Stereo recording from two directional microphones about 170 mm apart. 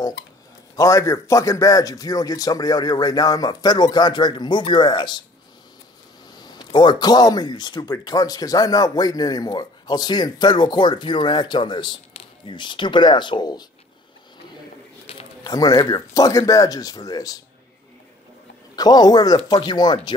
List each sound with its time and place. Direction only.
0.7 s speech: 20° left (ahead or behind)
6.3 s speech: 25° left (ahead or behind)
15.1 s a sound: 35° left (ahead or behind)
15.4 s speech: 20° left (ahead or behind)
18.8 s speech: 25° left (ahead or behind)